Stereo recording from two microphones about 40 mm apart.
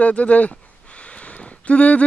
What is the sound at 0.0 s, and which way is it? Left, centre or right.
Speech, left.